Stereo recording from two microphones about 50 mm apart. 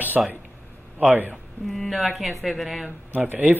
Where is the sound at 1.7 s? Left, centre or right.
Centre.